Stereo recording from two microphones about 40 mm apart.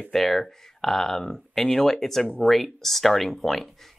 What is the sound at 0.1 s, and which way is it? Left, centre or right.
Speech, centre.